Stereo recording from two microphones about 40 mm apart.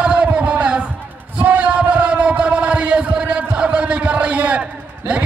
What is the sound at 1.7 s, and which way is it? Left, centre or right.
Chant, right.